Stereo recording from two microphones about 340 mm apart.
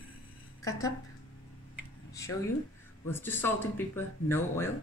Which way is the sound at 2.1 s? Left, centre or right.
Centre.